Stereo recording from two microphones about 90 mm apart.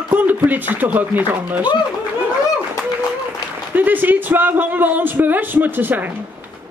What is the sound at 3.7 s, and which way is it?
A man's voice, 20° right (ahead or behind).